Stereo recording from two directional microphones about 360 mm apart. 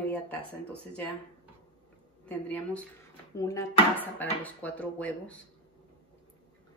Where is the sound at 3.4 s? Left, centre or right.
Centre.